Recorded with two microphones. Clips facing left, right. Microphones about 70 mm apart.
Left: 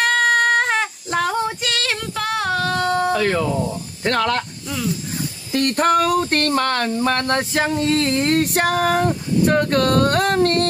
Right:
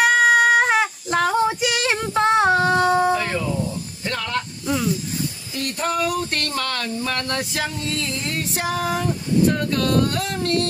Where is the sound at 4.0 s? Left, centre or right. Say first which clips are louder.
Left 7 dB; left.